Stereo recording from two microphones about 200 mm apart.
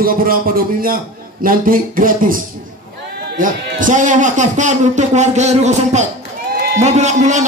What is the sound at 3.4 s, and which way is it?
A man's voice, 40° right (ahead or behind).